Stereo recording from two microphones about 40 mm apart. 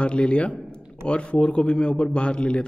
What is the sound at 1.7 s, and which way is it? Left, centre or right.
Speech, centre.